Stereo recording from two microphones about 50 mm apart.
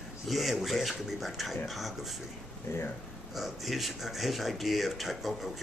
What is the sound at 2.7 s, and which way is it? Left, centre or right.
Speech, left.